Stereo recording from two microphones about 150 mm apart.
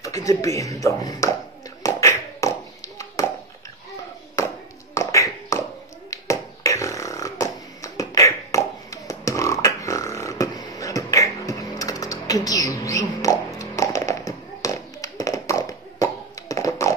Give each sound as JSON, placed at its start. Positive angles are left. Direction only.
{"t": 0.0, "sound": "speech", "side_deg": 20}
{"t": 1.8, "sound": "a sound", "side_deg": 20}
{"t": 4.9, "sound": "tap", "side_deg": 20}